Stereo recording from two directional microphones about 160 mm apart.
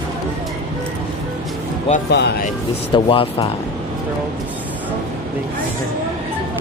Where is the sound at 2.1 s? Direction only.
90° left.